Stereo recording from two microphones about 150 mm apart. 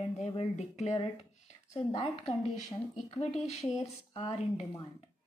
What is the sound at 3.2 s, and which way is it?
Speech, 45° left (ahead or behind).